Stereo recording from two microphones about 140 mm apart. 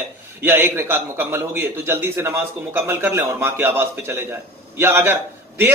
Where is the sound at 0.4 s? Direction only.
15° right (ahead or behind).